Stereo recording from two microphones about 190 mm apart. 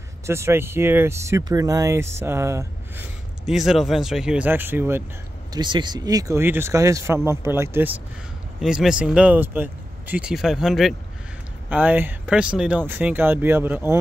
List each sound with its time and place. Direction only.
0.3 s speech: 15° right (ahead or behind)
3.4 s speech: centre (ahead or behind)
5.5 s speech: 25° right (ahead or behind)